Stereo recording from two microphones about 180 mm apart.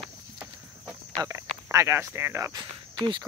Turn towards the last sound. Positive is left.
turn(degrees=-25)  # may be behind; listen again after turning